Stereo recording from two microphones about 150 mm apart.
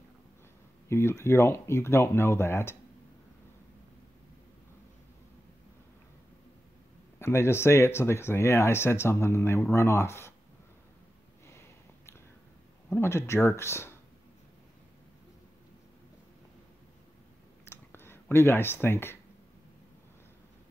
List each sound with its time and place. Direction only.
0.8 s speech: 15° left (ahead or behind)
7.2 s speech: 15° left (ahead or behind)
12.9 s speech: 15° left (ahead or behind)
17.6 s clicking: 15° left (ahead or behind)